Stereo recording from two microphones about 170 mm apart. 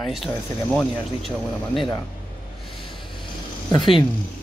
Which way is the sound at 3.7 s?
30° left (ahead or behind).